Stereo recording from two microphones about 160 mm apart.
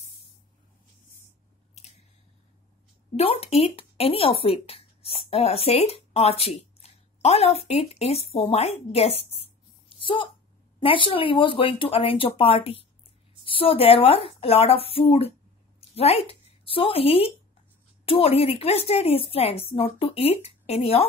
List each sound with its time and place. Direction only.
3.2 s a woman's voice: 40° left (ahead or behind)